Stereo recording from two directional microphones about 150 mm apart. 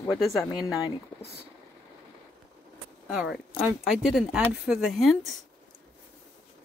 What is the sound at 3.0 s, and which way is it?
Speech, 5° right (ahead or behind).